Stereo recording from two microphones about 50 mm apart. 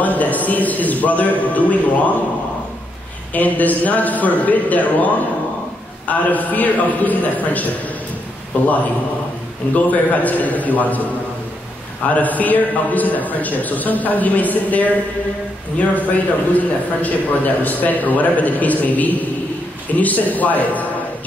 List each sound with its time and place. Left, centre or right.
0.0 s a man's voice: left
3.3 s a man's voice: left
9.8 s a man's voice: left
12.1 s a man's voice: left
16.1 s a man's voice: left